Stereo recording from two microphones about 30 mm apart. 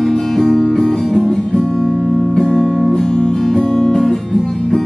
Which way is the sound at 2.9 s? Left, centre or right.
Left.